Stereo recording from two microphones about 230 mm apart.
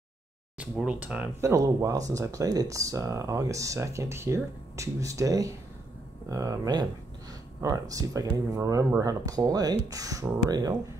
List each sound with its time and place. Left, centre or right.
0.6 s speech: centre